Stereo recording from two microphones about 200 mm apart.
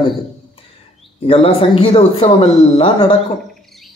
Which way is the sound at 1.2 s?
30° left (ahead or behind).